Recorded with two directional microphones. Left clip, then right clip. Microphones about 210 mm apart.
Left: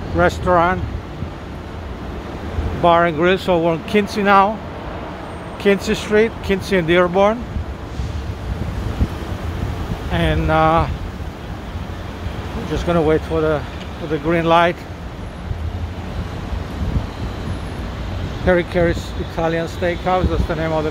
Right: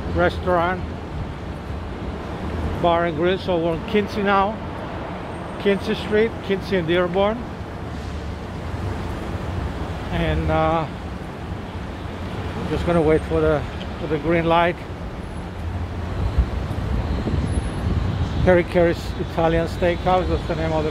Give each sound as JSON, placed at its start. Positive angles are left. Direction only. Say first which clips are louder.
{"t": 0.2, "sound": "speech", "louder": "left 5 dB", "side_deg": 20}
{"t": 2.8, "sound": "speech", "louder": "left 6 dB", "side_deg": 25}
{"t": 5.6, "sound": "speech", "louder": "left 5 dB", "side_deg": 25}
{"t": 10.1, "sound": "speech", "louder": "left 5 dB", "side_deg": 25}
{"t": 12.8, "sound": "speech", "louder": "left 2 dB", "side_deg": 15}
{"t": 18.4, "sound": "speech", "louder": "even", "side_deg": 0}